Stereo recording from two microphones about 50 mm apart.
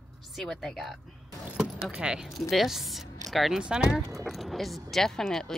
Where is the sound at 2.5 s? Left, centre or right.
Centre.